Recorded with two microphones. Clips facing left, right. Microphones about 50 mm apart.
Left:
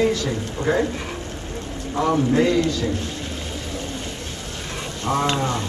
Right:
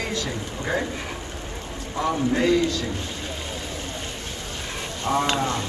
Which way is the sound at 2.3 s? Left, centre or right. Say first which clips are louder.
Right 1 dB; centre.